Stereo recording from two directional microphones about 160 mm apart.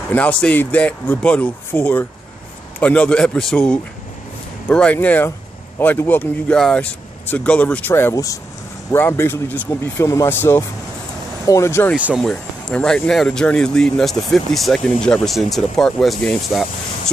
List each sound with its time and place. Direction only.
0.1 s a man's voice: 10° left (ahead or behind)
12.0 s speech: 10° right (ahead or behind)
12.3 s speech: 5° left (ahead or behind)